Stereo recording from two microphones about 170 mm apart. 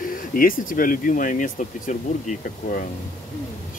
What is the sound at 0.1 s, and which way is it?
Speech, 55° left (ahead or behind).